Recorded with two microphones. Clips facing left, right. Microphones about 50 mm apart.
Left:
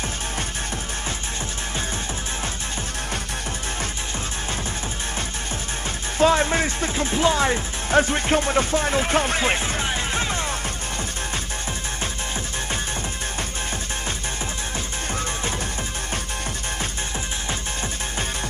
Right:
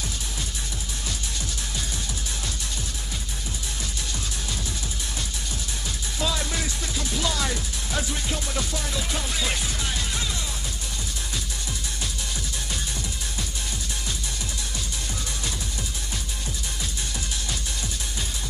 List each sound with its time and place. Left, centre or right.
6.1 s speech: left